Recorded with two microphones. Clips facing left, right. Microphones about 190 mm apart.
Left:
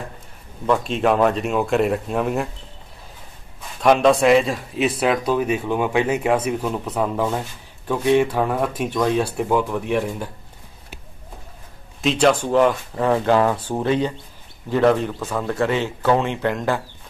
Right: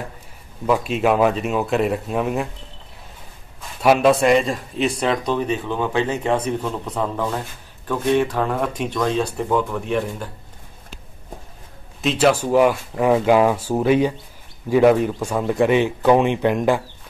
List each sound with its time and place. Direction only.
0.7 s speech: 5° right (ahead or behind)
3.8 s a man's voice: 5° right (ahead or behind)
12.0 s speech: 5° right (ahead or behind)